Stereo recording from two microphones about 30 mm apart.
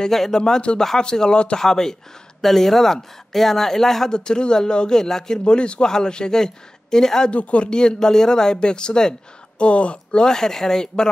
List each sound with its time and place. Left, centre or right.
0.3 s speech: left
4.1 s speech: left
5.4 s a man's voice: left
7.2 s a man's voice: left
7.7 s speech: left
9.6 s speech: left
10.2 s speech: centre